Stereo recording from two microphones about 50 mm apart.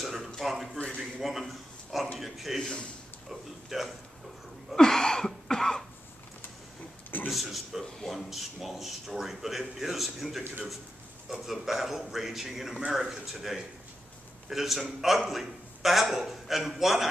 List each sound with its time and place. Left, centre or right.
0.0 s a sound: centre
2.1 s a man's voice: centre
2.6 s a man's voice: centre
3.3 s a man's voice: centre
4.7 s cough: centre
7.2 s a man's voice: centre